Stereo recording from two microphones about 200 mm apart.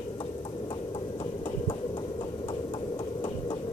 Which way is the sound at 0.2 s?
25° left (ahead or behind).